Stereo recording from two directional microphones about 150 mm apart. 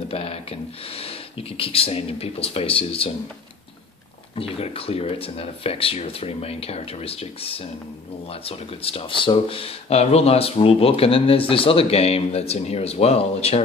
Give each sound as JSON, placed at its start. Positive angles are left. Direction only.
{"t": 0.1, "sound": "speech", "side_deg": 40}
{"t": 4.4, "sound": "speech", "side_deg": 40}